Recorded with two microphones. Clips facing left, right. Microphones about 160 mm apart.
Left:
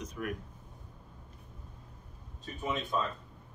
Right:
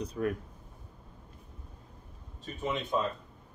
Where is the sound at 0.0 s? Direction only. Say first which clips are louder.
Right 7 dB; 35° right (ahead or behind).